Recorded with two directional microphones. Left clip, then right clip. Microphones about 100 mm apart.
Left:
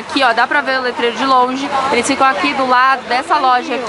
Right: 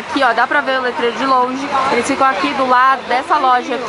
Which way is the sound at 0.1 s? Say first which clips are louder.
Left 1 dB; 5° left (ahead or behind).